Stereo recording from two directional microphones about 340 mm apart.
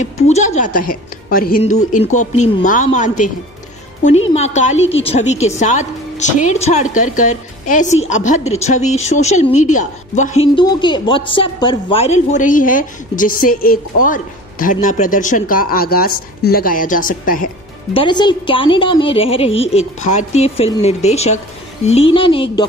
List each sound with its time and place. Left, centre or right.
0.0 s a woman's voice: centre
4.3 s a woman's voice: centre
17.9 s a woman's voice: centre